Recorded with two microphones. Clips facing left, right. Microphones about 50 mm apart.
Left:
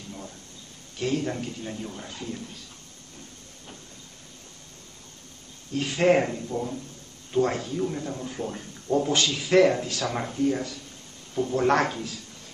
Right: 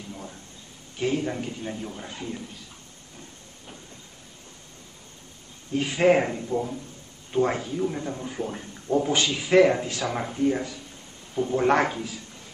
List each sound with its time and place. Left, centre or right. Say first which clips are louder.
0.9 s speech: right 1 dB; centre
5.7 s speech: right 1 dB; centre